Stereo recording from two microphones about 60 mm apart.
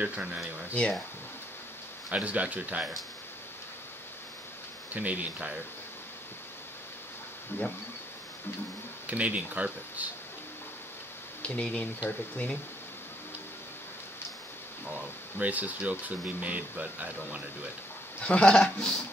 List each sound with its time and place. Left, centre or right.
0.0 s speech: centre
2.0 s speech: right
4.9 s speech: right
7.5 s speech: left
9.0 s speech: right
11.4 s speech: left
14.9 s speech: right
18.2 s a man's voice: centre